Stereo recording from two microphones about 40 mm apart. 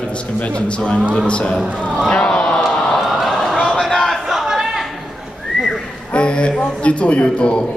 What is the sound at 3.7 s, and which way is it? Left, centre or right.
Crowd, centre.